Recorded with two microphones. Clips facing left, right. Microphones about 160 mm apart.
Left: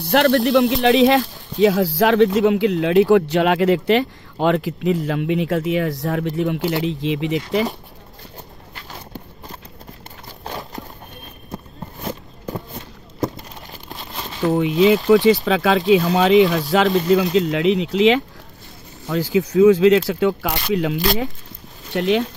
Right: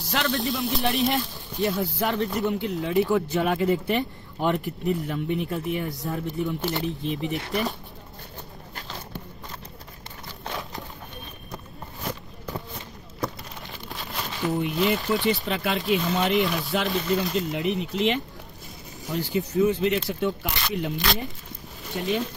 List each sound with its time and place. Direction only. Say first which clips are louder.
0.0 s speech: left 11 dB; 65° left (ahead or behind); by 7.6 s 90° left
14.4 s speech: left 8 dB; 70° left (ahead or behind)
15.0 s speech: left 11 dB; 90° left